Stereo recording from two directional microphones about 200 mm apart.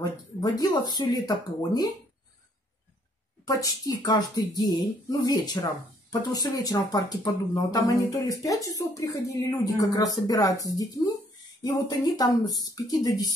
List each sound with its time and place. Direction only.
0.4 s speech: 20° left (ahead or behind)
3.4 s speech: 20° left (ahead or behind)